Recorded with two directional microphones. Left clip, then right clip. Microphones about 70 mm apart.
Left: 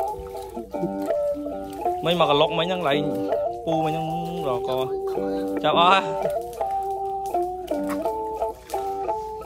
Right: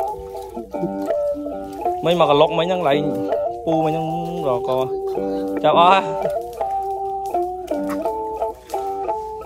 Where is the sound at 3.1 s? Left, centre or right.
Centre.